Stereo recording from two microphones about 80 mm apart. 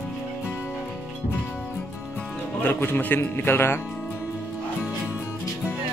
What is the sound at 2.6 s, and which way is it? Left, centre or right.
Speech, left.